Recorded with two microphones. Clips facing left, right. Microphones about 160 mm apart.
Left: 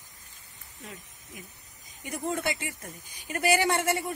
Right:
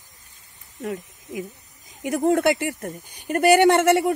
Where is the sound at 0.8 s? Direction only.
75° right (ahead or behind).